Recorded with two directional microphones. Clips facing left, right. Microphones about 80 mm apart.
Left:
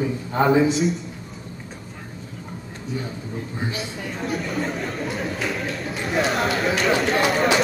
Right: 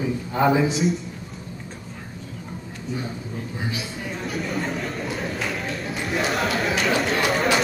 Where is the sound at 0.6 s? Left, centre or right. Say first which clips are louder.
Left 1 dB; centre.